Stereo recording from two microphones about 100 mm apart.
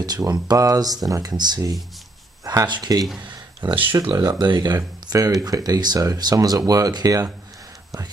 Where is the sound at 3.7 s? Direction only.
60° right (ahead or behind).